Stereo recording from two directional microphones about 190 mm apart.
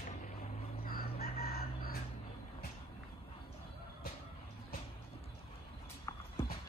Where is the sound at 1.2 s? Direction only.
55° left (ahead or behind).